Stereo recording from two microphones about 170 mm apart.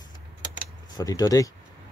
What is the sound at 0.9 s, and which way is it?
Speech, 20° left (ahead or behind).